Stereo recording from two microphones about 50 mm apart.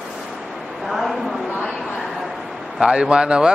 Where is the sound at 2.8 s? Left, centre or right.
Centre.